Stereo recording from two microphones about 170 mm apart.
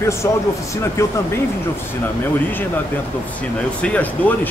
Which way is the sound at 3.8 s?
10° left (ahead or behind).